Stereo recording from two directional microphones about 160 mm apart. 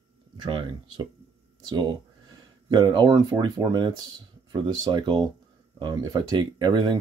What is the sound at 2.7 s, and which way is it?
Speech, 30° right (ahead or behind).